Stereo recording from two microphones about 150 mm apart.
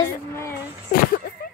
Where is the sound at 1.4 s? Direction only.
90° left.